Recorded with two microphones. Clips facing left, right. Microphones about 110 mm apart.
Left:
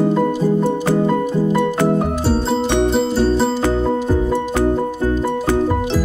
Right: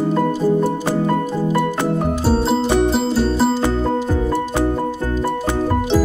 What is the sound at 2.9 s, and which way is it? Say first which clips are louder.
Music: left 2 dB; centre (ahead or behind).